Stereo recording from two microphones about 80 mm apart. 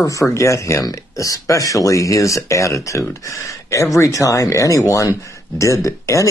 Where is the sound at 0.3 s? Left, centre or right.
Left.